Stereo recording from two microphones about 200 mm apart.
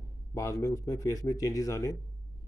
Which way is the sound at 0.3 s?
15° left (ahead or behind).